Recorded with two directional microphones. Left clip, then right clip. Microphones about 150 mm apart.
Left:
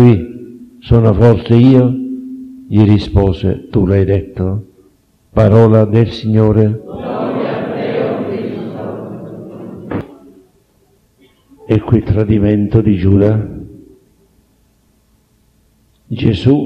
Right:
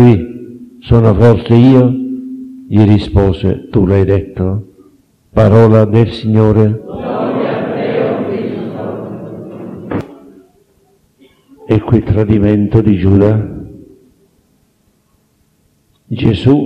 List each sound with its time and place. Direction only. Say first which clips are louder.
0.0 s a man's voice: right 1 dB; 40° left (ahead or behind)
5.3 s mantra: right 1 dB; 35° left (ahead or behind)
11.2 s a man's voice: right 2 dB; 40° left (ahead or behind)
16.1 s speech: right 2 dB; 40° left (ahead or behind)